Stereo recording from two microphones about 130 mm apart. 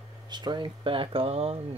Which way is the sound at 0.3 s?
35° right (ahead or behind).